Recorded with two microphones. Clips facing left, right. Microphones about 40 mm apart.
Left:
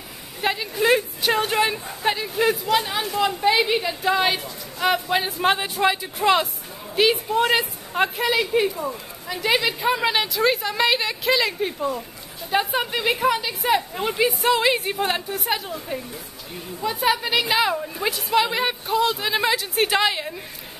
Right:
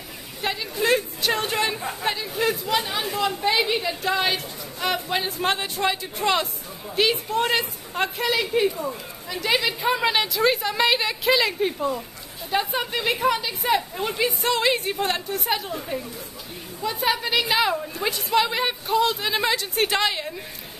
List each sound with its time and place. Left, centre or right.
0.4 s a woman's voice: centre